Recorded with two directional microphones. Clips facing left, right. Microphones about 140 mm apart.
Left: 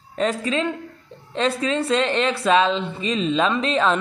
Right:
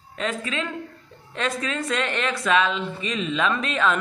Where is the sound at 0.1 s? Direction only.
35° left (ahead or behind).